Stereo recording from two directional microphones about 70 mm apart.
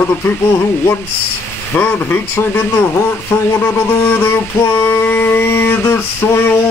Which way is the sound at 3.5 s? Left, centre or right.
Left.